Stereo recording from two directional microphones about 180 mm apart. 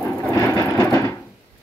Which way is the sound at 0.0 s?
10° left (ahead or behind).